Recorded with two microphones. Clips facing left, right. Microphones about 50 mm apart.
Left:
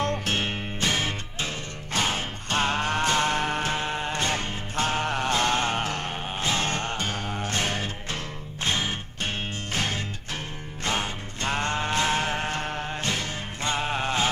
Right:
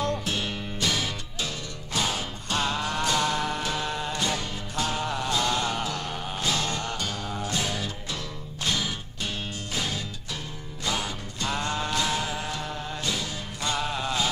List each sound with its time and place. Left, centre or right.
0.0 s music: left
10.9 s music: left